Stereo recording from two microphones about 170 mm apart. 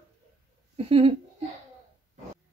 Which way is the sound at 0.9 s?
35° right (ahead or behind).